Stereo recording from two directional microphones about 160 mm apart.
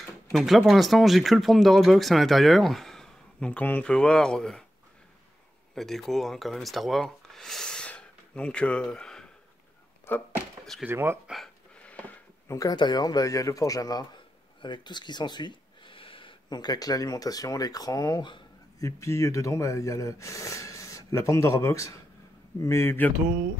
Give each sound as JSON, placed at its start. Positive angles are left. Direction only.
{"t": 0.0, "sound": "speech", "side_deg": 0}
{"t": 5.8, "sound": "speech", "side_deg": 0}
{"t": 10.1, "sound": "a sound", "side_deg": 10}
{"t": 10.9, "sound": "speech", "side_deg": -15}
{"t": 11.3, "sound": "a sound", "side_deg": 5}
{"t": 12.5, "sound": "speech", "side_deg": 25}